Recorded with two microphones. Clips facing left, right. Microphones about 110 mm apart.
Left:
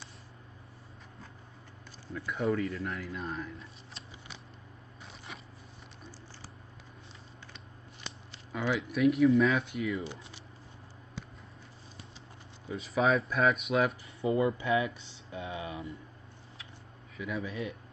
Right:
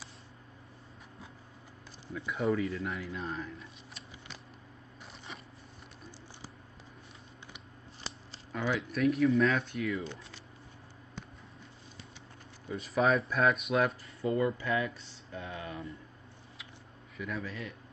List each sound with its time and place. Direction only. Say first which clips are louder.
2.1 s a man's voice: even; centre (ahead or behind)
8.7 s a man's voice: left 3 dB; centre (ahead or behind)
12.6 s a man's voice: even; centre (ahead or behind)
14.2 s speech: left 2 dB; 20° left (ahead or behind)
17.2 s a man's voice: left 2 dB; centre (ahead or behind)